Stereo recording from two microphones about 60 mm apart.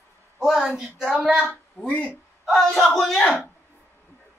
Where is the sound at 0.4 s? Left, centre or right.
Centre.